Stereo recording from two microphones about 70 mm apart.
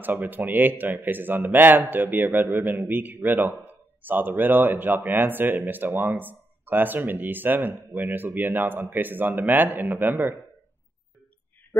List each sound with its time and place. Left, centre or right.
0.0 s speech: right